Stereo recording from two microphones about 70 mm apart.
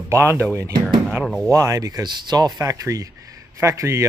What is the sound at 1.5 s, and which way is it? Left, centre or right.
Speech, right.